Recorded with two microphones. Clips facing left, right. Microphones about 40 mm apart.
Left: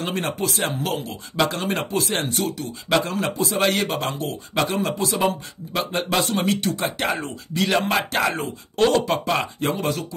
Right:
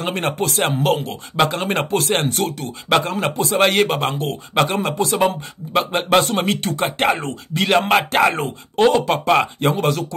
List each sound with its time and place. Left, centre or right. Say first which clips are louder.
0.0 s speech: right 4 dB; right